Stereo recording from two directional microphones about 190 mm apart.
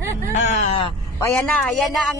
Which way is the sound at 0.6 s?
30° left (ahead or behind).